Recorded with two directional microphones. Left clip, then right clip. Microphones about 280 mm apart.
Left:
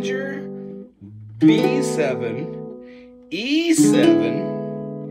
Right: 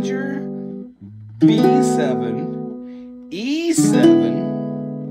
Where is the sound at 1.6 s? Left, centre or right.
Centre.